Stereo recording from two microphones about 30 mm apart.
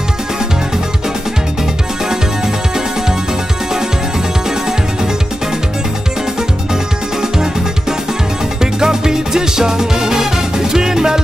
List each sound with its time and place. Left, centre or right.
6.7 s music: centre
8.5 s music: centre